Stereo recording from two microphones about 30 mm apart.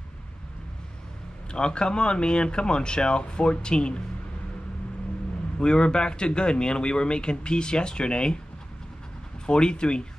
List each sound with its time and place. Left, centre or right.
1.5 s speech: left
5.6 s speech: left
9.5 s speech: left